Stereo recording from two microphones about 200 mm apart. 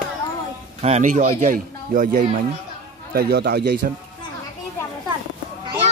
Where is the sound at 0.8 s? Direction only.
35° right (ahead or behind); by 3.8 s 55° right (ahead or behind).